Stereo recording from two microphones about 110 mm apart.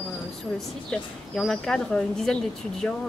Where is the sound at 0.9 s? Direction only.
5° left (ahead or behind).